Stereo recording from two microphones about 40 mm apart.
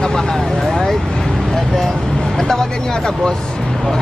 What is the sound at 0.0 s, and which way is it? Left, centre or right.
Vehicle, centre.